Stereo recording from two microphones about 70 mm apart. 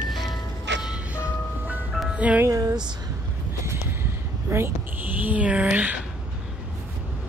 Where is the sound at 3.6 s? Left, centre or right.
Right.